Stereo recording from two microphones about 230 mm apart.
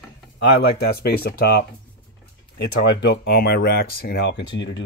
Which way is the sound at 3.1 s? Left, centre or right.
Left.